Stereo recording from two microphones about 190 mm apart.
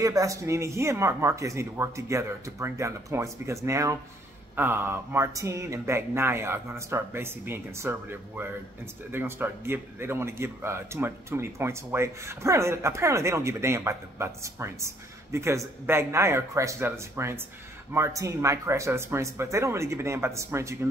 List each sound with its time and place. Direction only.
0.0 s speech: 15° right (ahead or behind)